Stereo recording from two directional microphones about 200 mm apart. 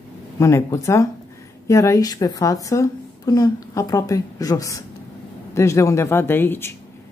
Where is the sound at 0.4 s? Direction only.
15° left (ahead or behind).